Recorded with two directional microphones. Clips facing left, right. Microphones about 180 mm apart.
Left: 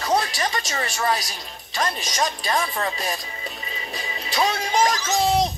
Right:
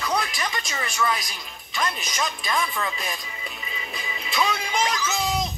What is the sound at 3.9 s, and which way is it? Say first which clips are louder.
Music: left 2 dB; 35° left (ahead or behind).